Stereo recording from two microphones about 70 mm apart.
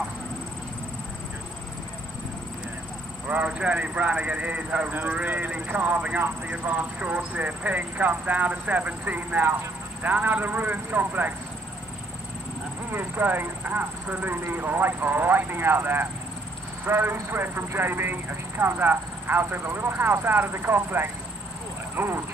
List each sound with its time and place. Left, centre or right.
3.3 s speech: centre
12.9 s speech: right